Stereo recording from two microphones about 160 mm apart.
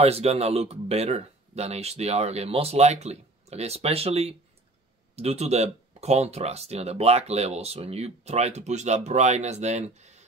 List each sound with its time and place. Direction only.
0.0 s speech: 40° right (ahead or behind)